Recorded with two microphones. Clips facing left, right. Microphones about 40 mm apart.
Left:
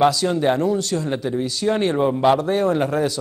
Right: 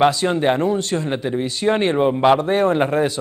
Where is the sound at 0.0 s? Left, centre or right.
Right.